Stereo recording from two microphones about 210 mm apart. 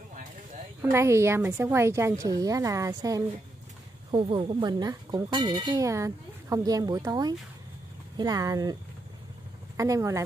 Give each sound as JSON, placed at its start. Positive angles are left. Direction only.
{"t": 0.9, "sound": "speech", "side_deg": -15}
{"t": 9.8, "sound": "speech", "side_deg": -15}